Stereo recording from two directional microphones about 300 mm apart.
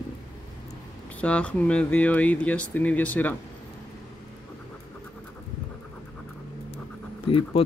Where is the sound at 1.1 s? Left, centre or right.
Centre.